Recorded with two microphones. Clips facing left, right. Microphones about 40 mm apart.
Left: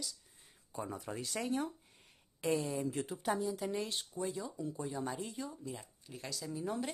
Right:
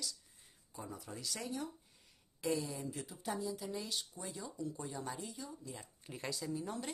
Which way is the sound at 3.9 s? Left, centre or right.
Left.